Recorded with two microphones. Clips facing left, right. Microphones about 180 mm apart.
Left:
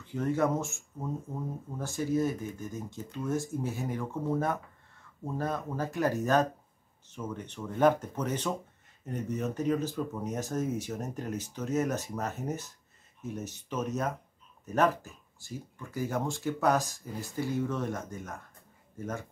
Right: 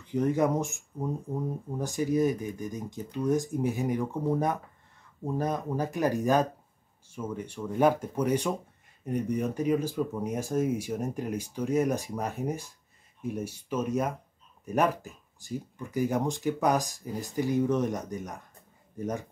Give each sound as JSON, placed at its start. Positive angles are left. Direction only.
{"t": 0.0, "sound": "speech", "side_deg": -15}